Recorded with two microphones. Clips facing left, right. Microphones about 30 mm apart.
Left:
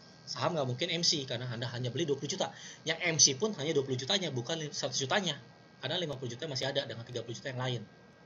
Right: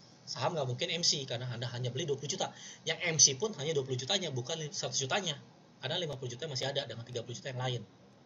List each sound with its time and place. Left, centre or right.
0.5 s speech: centre